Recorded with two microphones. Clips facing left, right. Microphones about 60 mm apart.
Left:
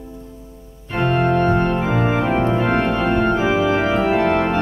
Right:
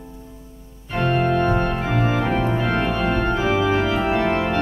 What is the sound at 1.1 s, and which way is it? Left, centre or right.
Organ, centre.